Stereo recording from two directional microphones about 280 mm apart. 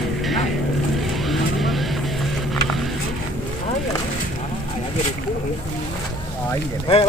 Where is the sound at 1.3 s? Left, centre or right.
Centre.